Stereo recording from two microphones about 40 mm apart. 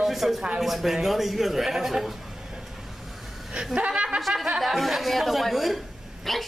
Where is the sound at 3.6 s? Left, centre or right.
Right.